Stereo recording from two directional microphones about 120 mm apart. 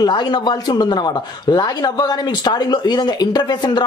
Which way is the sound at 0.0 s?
35° left (ahead or behind).